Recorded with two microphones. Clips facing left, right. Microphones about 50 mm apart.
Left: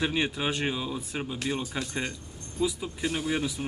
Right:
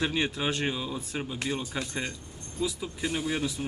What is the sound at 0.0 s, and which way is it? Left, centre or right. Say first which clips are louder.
Speech: left 1 dB; centre.